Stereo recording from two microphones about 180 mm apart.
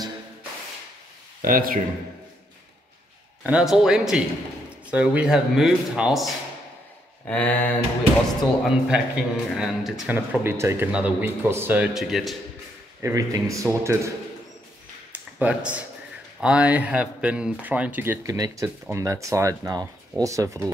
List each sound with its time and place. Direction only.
1.4 s speech: 50° right (ahead or behind)
3.4 s a man's voice: 5° right (ahead or behind)
7.2 s speech: 10° left (ahead or behind)
8.6 s a man's voice: 5° right (ahead or behind)
13.0 s speech: 20° right (ahead or behind)
15.1 s speech: 10° right (ahead or behind)